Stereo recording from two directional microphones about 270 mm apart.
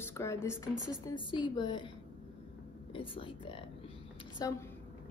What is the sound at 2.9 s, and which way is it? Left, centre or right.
A woman's voice, centre.